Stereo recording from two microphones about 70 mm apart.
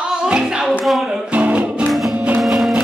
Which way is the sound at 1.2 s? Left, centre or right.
Centre.